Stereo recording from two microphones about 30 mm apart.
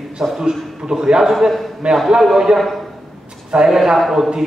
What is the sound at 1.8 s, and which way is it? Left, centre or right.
Speech, right.